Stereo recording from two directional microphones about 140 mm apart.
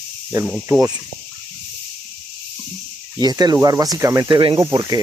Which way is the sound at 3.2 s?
30° right (ahead or behind).